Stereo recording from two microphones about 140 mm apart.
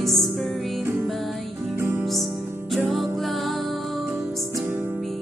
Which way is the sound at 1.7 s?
15° right (ahead or behind).